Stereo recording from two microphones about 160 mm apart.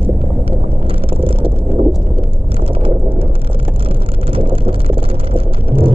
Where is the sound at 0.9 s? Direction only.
35° right (ahead or behind).